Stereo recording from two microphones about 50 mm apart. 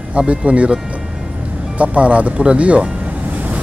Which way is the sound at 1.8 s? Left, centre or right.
Right.